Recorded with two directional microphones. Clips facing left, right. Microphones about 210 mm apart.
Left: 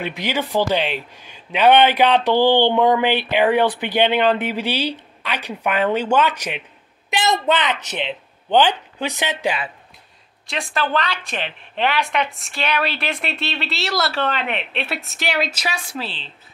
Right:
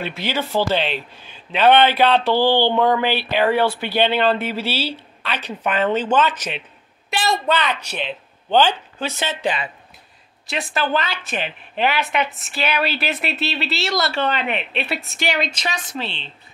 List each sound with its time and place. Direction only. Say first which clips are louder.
0.0 s a woman's voice: left 1 dB; 15° left (ahead or behind)
10.4 s a woman's voice: right 1 dB; 5° right (ahead or behind)